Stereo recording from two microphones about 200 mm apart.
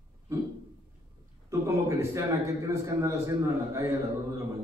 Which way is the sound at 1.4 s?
15° right (ahead or behind).